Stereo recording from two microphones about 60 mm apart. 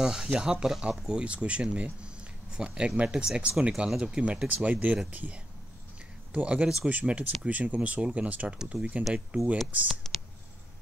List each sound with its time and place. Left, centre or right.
0.0 s speech: centre